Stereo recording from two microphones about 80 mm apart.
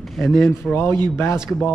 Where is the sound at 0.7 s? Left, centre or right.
Left.